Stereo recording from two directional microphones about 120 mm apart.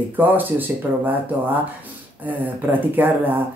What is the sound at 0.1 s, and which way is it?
Speech, 15° right (ahead or behind).